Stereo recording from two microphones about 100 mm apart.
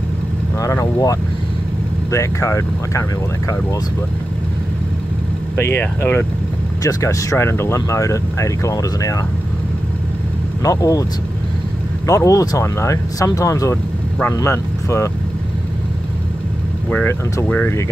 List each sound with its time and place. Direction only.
0.6 s speech: 35° left (ahead or behind)
5.6 s speech: 20° left (ahead or behind)
6.8 s speech: 35° left (ahead or behind)
10.6 s speech: 35° left (ahead or behind)
12.1 s speech: 30° left (ahead or behind)
16.9 s speech: 15° left (ahead or behind)